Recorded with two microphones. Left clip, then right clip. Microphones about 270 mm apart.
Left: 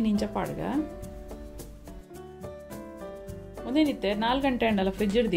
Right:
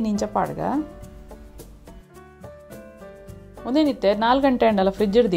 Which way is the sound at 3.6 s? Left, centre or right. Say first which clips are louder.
Right 7 dB; right.